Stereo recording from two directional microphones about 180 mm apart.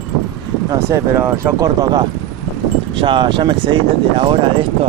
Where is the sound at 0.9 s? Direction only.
15° right (ahead or behind).